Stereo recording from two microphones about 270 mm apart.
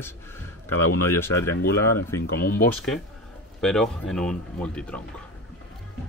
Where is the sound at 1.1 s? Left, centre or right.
Centre.